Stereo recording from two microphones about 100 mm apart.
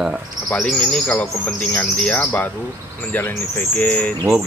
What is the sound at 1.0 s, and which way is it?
Speech, 15° left (ahead or behind).